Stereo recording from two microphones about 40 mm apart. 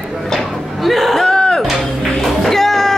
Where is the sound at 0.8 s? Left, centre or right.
Centre.